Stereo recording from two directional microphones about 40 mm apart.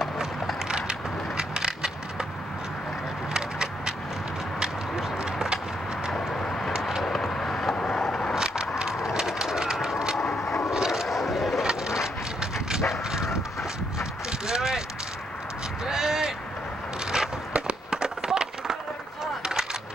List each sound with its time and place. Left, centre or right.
0.7 s crushing: right
3.3 s a sound: centre
6.3 s vehicle: centre
7.0 s vehicle: centre
7.9 s skateboard: centre
8.4 s a sound: centre
9.1 s train: centre
10.1 s vehicle: centre
10.7 s vehicle: centre
11.1 s vehicle: centre
11.6 s dog: centre
14.4 s a sound: centre
15.8 s a sound: centre